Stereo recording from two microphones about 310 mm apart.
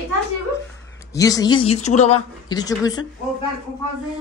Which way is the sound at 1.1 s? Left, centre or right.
Centre.